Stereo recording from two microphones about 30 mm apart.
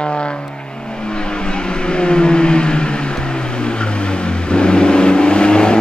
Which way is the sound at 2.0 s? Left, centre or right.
Left.